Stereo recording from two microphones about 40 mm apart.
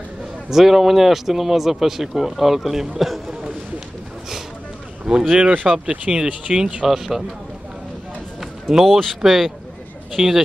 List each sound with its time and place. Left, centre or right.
0.5 s a man's voice: centre
5.1 s speech: centre
8.4 s speech: centre